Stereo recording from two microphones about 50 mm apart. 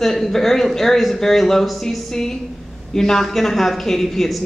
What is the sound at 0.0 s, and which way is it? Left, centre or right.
A woman's voice, centre.